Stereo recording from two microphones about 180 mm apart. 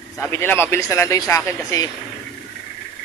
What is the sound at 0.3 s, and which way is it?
Speech, 15° left (ahead or behind).